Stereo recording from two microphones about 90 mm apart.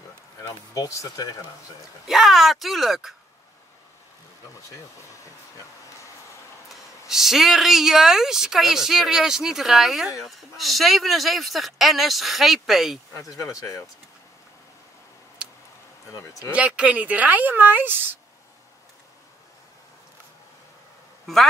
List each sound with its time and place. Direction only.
0.4 s speech: 40° left (ahead or behind)
2.0 s speech: centre (ahead or behind)
4.6 s speech: 35° left (ahead or behind)
6.7 s speech: 5° right (ahead or behind)
13.2 s speech: 40° left (ahead or behind)
15.4 s a sound: 10° right (ahead or behind)
16.1 s speech: 40° left (ahead or behind)
16.5 s speech: 15° right (ahead or behind)